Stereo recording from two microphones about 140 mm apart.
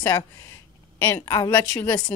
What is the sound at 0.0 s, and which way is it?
A woman's voice, 15° left (ahead or behind).